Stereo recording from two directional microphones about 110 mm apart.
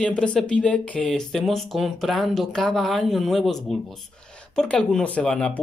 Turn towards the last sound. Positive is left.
turn(degrees=5)  # may be behind; listen again after turning